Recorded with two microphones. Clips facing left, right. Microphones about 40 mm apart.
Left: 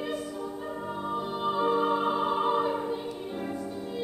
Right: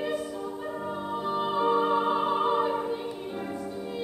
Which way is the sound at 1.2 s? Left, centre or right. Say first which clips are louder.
Right 4 dB; centre.